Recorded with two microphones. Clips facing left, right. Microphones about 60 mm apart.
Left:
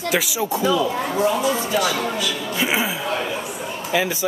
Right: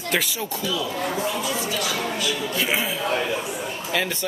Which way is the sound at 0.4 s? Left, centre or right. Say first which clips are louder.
Left 7 dB; centre.